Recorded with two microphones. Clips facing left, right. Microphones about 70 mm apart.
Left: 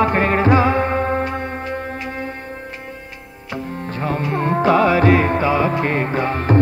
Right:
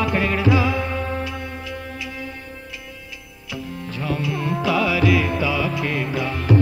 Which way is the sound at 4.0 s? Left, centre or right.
Left.